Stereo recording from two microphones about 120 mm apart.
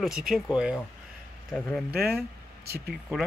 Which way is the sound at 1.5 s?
10° left (ahead or behind).